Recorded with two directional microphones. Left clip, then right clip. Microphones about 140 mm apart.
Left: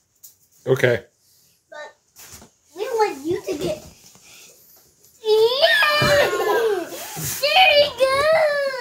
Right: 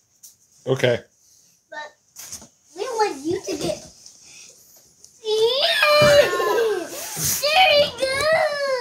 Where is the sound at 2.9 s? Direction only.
45° right (ahead or behind).